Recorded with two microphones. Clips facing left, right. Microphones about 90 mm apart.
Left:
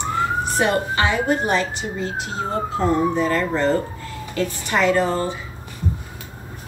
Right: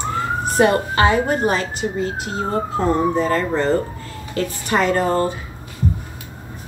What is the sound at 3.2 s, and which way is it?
A woman's voice, 35° right (ahead or behind).